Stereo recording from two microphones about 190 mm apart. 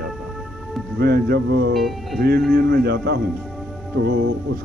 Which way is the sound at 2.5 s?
55° right (ahead or behind).